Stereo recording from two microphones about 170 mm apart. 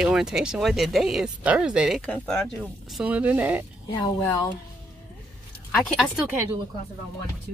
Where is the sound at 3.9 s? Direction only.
20° left (ahead or behind).